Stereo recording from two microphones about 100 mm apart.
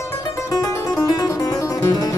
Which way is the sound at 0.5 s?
40° left (ahead or behind).